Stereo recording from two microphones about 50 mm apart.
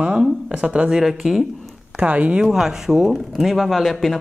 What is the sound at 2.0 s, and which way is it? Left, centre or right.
Speech, right.